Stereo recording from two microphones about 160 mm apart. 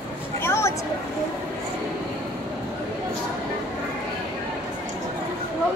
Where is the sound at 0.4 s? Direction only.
15° left (ahead or behind).